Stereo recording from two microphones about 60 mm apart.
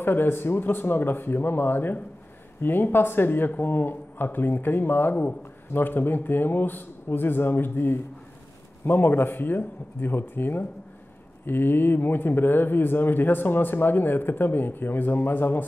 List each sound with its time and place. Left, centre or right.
0.0 s speech: left